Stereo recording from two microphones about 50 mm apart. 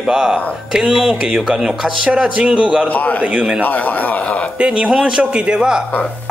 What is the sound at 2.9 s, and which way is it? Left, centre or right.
Speech, left.